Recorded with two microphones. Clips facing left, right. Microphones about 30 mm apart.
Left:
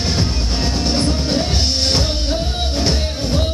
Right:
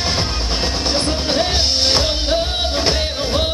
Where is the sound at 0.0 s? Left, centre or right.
Right.